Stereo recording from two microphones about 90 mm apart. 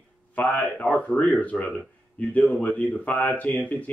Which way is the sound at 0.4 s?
15° left (ahead or behind).